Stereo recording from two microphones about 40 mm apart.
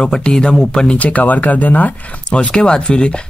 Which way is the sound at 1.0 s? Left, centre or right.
Left.